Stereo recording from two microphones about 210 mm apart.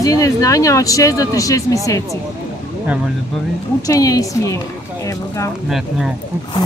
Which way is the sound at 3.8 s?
15° left (ahead or behind).